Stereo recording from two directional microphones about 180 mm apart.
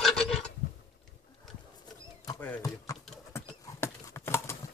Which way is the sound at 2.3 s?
15° left (ahead or behind).